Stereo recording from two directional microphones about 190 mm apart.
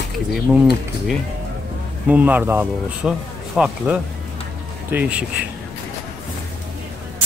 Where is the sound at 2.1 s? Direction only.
10° right (ahead or behind).